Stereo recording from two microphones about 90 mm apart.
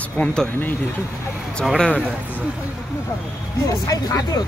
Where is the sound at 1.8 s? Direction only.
10° left (ahead or behind).